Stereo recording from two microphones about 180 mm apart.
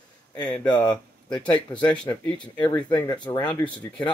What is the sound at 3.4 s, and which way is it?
Speech, 5° left (ahead or behind).